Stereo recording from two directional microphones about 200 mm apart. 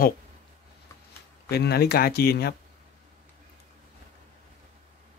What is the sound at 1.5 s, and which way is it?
Speech, 55° left (ahead or behind).